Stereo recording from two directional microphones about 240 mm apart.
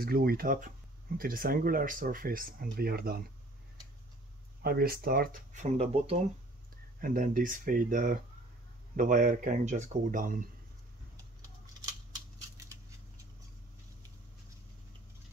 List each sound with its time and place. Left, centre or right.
0.0 s speech: right
4.6 s speech: right
12.6 s scissors: centre